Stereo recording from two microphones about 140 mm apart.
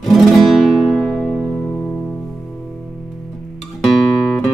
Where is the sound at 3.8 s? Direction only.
5° left (ahead or behind).